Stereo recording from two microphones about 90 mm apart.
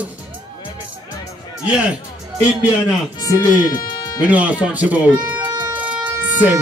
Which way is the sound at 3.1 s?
45° left (ahead or behind).